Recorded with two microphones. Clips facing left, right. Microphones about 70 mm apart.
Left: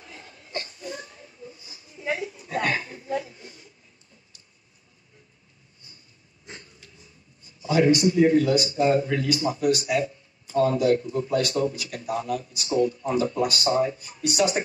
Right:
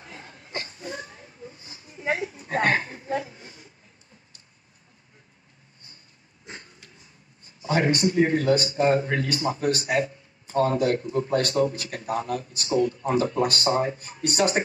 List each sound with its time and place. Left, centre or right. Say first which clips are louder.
0.0 s wheeze: right 2 dB; right
6.8 s a man's voice: even; right